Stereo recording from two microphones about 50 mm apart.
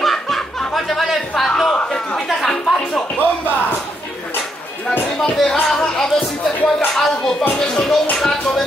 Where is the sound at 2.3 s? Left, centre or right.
Centre.